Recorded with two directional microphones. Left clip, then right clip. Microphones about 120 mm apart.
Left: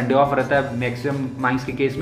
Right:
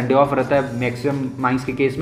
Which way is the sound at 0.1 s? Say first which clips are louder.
Right 1 dB; 25° right (ahead or behind).